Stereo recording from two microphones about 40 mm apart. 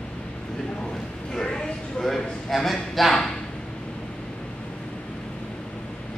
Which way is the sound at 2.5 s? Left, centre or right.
Centre.